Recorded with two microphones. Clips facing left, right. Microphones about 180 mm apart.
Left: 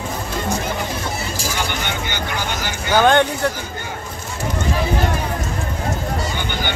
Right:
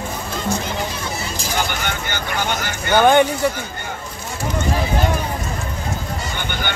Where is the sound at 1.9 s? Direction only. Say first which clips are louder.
Even; 50° right (ahead or behind).